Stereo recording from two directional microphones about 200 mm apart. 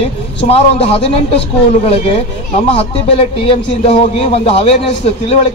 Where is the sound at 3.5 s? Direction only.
30° left (ahead or behind).